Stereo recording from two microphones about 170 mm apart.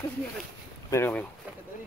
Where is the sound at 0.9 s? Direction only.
10° left (ahead or behind).